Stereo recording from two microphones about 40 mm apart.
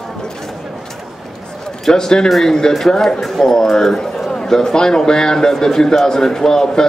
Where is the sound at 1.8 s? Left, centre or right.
Centre.